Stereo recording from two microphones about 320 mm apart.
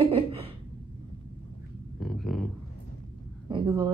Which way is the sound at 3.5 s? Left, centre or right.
Centre.